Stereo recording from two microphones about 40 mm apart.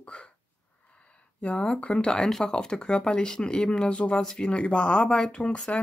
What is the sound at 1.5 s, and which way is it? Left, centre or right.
Speech, left.